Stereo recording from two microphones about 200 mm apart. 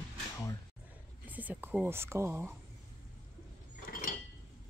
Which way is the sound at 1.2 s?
10° right (ahead or behind).